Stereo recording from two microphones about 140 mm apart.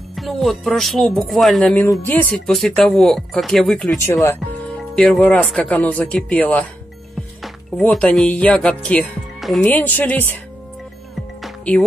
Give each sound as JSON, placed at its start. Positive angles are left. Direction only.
{"t": 0.1, "sound": "speech", "side_deg": 0}
{"t": 1.9, "sound": "speech", "side_deg": 15}
{"t": 2.3, "sound": "speech", "side_deg": 5}
{"t": 4.0, "sound": "speech", "side_deg": 20}
{"t": 4.9, "sound": "speech", "side_deg": 5}
{"t": 9.7, "sound": "speech", "side_deg": 10}